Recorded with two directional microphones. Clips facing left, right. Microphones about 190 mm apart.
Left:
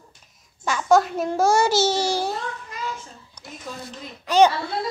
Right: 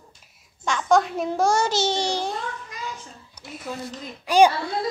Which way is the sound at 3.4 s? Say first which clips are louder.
Right 1 dB; 10° right (ahead or behind).